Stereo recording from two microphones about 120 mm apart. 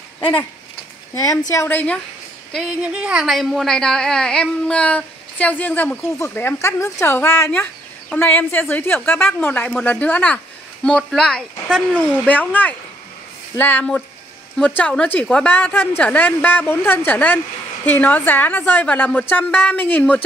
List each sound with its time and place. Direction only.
0.2 s a sound: 40° left (ahead or behind)
1.5 s a woman's voice: 20° left (ahead or behind)
2.8 s a woman's voice: 10° right (ahead or behind); by 20.2 s 15° left (ahead or behind)